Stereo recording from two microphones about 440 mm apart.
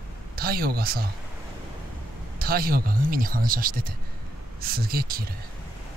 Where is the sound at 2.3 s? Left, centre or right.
Centre.